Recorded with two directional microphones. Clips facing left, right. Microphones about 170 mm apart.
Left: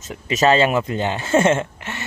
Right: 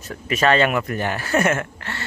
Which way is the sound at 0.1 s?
20° left (ahead or behind).